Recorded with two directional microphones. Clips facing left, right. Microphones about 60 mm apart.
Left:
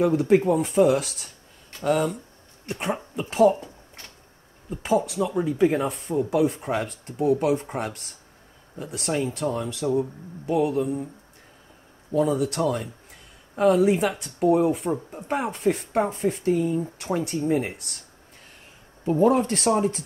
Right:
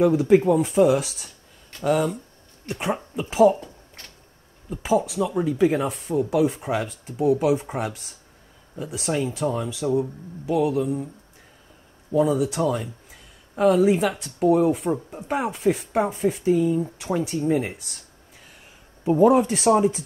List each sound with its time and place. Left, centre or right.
0.0 s speech: centre
3.5 s a sound: centre
4.6 s speech: centre
12.2 s speech: centre
19.0 s speech: centre